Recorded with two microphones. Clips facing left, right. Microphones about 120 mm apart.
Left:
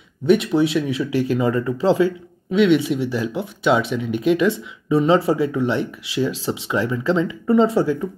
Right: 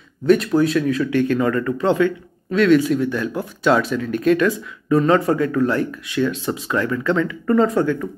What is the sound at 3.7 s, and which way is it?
Speech, 5° left (ahead or behind).